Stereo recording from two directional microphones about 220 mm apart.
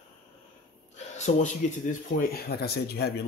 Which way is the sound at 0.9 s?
30° left (ahead or behind).